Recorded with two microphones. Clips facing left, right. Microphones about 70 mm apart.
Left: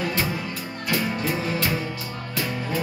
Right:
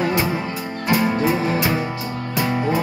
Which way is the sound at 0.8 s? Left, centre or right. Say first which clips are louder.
Right 7 dB; right.